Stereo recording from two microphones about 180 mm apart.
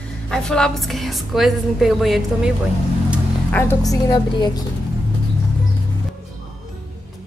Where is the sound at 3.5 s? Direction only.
10° left (ahead or behind).